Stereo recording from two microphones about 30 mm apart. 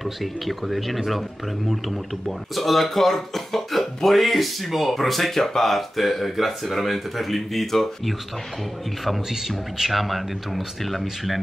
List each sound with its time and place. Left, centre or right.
0.0 s speech: centre
9.8 s speech: centre